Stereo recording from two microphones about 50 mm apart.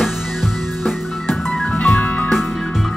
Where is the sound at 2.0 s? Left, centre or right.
Left.